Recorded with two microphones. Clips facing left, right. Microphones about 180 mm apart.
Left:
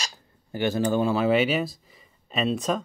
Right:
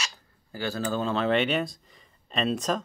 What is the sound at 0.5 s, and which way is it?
Speech, 20° left (ahead or behind).